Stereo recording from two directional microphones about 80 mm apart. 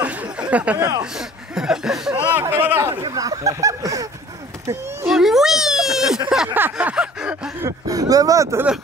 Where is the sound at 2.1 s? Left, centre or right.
Centre.